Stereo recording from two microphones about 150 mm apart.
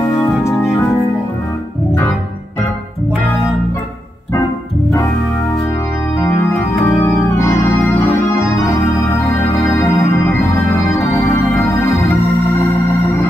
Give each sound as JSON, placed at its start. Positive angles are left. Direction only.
{"t": 7.0, "sound": "organ", "side_deg": 15}
{"t": 9.7, "sound": "music", "side_deg": 20}